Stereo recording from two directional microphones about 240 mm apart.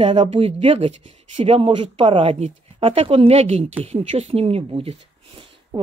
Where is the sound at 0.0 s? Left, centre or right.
Right.